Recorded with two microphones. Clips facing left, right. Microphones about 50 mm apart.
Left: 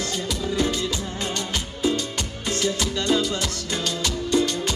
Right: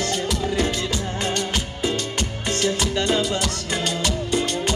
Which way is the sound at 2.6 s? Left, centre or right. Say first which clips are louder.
Right 2 dB; right.